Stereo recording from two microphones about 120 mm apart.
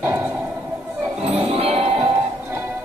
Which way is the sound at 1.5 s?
55° right (ahead or behind).